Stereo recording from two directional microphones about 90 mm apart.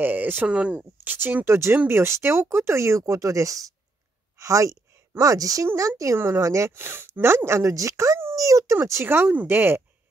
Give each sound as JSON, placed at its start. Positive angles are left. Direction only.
{"t": 0.0, "sound": "a woman's voice", "side_deg": -20}